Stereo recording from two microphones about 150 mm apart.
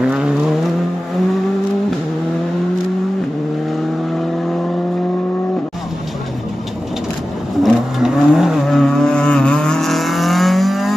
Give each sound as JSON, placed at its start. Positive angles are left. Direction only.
{"t": 0.0, "sound": "vehicle", "side_deg": -5}
{"t": 7.6, "sound": "vehicle", "side_deg": -5}